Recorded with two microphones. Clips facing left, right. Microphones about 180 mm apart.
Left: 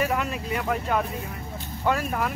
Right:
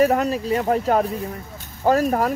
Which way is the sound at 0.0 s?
40° right (ahead or behind).